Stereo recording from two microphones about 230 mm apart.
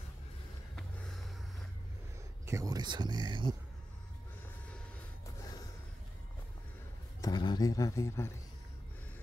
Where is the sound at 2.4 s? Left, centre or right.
Centre.